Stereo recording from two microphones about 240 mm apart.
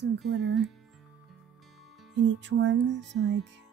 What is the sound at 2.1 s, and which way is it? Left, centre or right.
Music, right.